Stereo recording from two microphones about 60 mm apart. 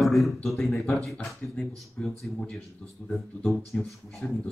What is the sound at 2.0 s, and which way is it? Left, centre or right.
Speech, centre.